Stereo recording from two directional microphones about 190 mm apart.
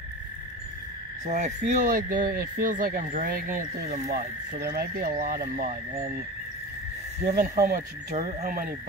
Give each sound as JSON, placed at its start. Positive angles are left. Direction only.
{"t": 1.2, "sound": "speech", "side_deg": -40}
{"t": 7.2, "sound": "speech", "side_deg": -40}